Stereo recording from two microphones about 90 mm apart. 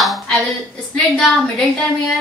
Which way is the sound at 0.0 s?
Centre (ahead or behind).